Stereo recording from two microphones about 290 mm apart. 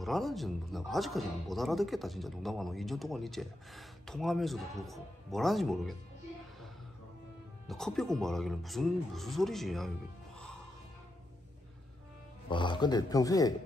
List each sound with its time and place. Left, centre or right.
0.0 s speech: centre
7.6 s speech: centre
12.4 s speech: centre